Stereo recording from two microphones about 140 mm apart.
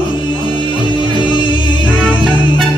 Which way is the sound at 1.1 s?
35° left (ahead or behind).